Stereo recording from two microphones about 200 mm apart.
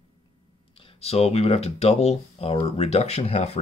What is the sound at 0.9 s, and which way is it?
Speech, 30° left (ahead or behind).